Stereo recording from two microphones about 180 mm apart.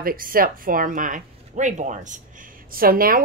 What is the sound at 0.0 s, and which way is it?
A woman's voice, 55° right (ahead or behind).